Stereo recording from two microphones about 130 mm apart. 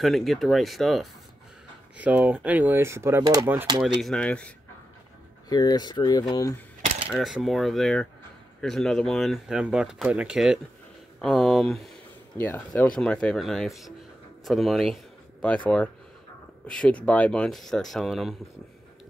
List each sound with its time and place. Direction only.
0.0 s speech: centre (ahead or behind)
2.0 s speech: 10° right (ahead or behind)
4.0 s speech: 5° left (ahead or behind)
5.5 s speech: 30° left (ahead or behind)
7.1 s speech: 5° right (ahead or behind)